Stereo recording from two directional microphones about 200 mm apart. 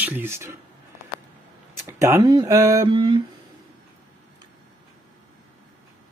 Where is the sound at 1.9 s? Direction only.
15° right (ahead or behind).